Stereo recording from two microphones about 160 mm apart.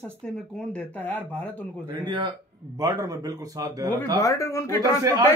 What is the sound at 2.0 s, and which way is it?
Speech, 30° right (ahead or behind).